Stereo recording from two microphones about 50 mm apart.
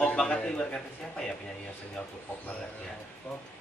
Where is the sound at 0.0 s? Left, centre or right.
Centre.